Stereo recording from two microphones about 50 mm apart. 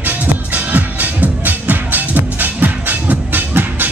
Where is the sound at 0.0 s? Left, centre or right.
Right.